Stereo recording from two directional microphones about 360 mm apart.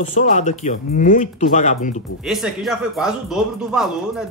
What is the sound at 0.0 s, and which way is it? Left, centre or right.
Speech, left.